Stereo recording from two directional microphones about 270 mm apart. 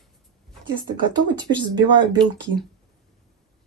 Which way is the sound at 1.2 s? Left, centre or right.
Centre.